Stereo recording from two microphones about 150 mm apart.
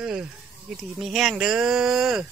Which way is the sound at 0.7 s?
Centre (ahead or behind).